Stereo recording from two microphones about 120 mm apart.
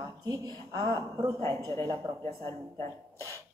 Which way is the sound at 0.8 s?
40° right (ahead or behind).